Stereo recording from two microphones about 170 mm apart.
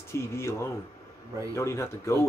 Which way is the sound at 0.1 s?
15° left (ahead or behind).